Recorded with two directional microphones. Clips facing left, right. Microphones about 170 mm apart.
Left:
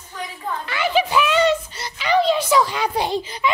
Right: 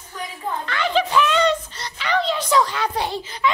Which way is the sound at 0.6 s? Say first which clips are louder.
Left 1 dB; 10° left (ahead or behind).